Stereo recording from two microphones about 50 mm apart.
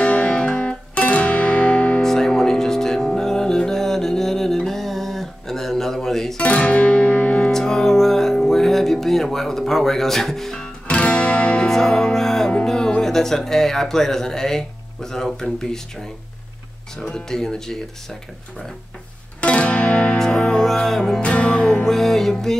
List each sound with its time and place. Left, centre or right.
0.0 s music: left
2.0 s music: centre
6.3 s music: left
7.5 s music: centre
10.9 s music: left
11.6 s music: centre
16.9 s speech: centre
19.4 s music: left
20.2 s music: centre
21.2 s music: left
21.8 s music: centre